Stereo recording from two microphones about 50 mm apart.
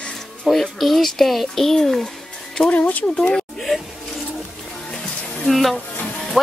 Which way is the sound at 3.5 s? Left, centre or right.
Centre.